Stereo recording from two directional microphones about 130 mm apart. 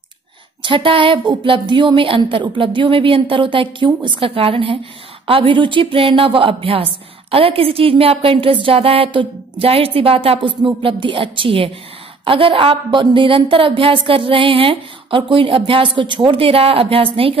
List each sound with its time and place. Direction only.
0.6 s a woman's voice: 40° right (ahead or behind)